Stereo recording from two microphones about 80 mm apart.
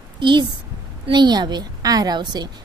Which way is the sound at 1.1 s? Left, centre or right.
Right.